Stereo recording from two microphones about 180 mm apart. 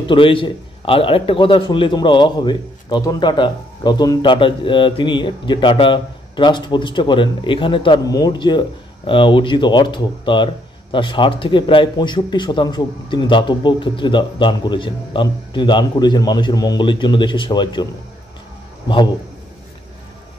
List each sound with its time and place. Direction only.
0.0 s a man's voice: 30° left (ahead or behind)